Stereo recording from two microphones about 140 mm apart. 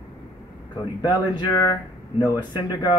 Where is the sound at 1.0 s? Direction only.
30° left (ahead or behind).